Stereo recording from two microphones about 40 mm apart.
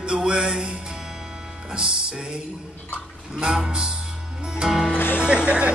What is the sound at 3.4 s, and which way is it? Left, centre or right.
Music, right.